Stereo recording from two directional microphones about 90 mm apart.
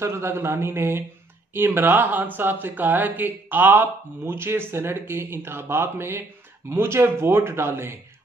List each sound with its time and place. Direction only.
0.0 s speech: 30° right (ahead or behind)